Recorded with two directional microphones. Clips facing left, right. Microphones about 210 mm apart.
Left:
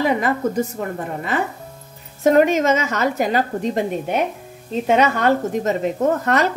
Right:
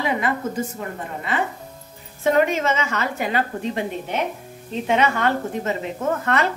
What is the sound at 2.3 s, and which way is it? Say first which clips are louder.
A woman's voice: left 5 dB; 45° left (ahead or behind).